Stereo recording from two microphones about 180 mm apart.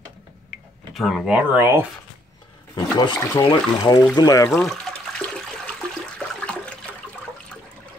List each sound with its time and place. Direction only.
0.9 s speech: centre (ahead or behind)
2.7 s speech: 25° left (ahead or behind)
4.5 s speech: centre (ahead or behind)
6.1 s toilet flush: 5° left (ahead or behind)